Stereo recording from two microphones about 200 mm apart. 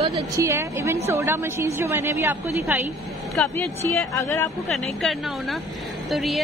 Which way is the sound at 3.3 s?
15° left (ahead or behind).